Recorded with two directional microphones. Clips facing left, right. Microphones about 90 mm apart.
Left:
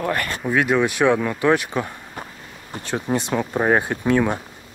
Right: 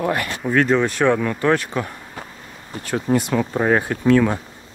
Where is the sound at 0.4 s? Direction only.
5° left (ahead or behind).